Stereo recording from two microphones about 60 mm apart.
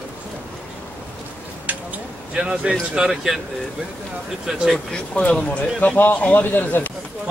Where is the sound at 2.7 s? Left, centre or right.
Centre.